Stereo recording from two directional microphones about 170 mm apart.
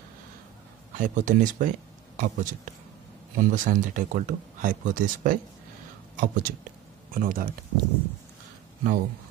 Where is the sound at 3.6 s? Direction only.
50° right (ahead or behind).